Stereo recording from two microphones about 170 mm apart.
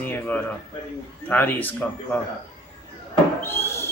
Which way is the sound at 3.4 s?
15° left (ahead or behind).